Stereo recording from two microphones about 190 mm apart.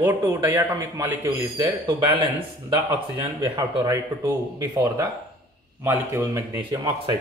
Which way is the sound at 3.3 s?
20° right (ahead or behind).